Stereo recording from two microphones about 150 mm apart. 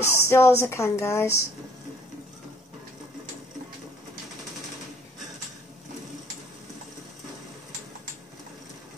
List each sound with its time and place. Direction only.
0.0 s speech: 20° left (ahead or behind)